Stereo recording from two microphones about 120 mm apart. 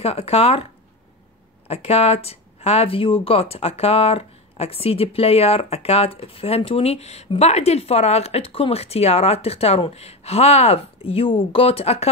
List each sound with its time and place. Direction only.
0.0 s speech: 55° left (ahead or behind)
1.7 s speech: 60° left (ahead or behind)